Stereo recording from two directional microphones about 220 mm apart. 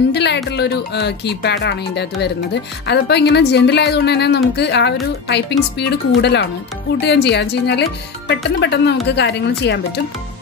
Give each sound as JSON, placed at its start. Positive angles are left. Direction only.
{"t": 0.1, "sound": "music", "side_deg": 50}
{"t": 0.5, "sound": "speech", "side_deg": 50}